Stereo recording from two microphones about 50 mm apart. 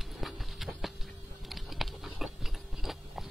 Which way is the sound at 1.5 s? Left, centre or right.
Centre.